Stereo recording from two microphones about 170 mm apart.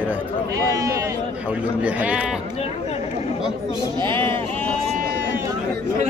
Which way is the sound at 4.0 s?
30° right (ahead or behind).